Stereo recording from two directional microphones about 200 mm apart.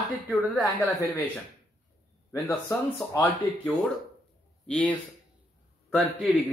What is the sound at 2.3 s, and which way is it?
Speech, 20° left (ahead or behind).